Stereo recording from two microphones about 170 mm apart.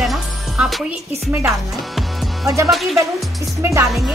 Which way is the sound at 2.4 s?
15° right (ahead or behind).